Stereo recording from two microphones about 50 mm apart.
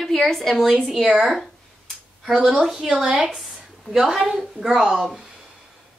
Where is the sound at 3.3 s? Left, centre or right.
Centre.